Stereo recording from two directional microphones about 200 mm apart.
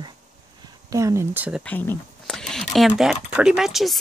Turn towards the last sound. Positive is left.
turn(degrees=0)  # may be behind; listen again after turning